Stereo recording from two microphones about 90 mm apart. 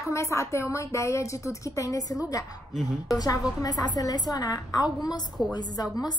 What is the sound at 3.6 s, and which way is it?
Speech, 45° left (ahead or behind).